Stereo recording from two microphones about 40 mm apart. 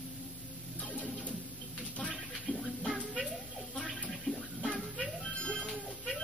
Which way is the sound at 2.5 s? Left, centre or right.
Left.